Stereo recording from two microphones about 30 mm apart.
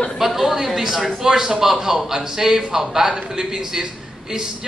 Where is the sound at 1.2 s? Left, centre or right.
Centre.